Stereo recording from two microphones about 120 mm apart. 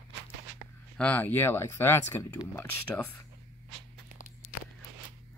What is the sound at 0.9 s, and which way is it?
Speech, 10° left (ahead or behind).